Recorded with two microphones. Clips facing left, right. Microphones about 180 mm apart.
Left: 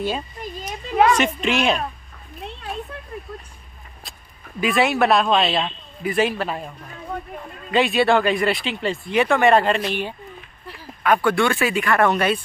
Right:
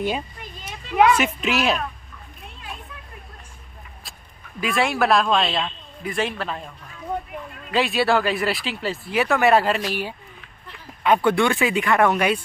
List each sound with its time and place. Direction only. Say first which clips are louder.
0.4 s a sound: left 7 dB; 40° left (ahead or behind)
1.1 s speech: left 2 dB; 5° right (ahead or behind)
4.6 s speech: left 3 dB; centre (ahead or behind)
7.7 s speech: left 3 dB; centre (ahead or behind)
11.0 s speech: even; 20° right (ahead or behind)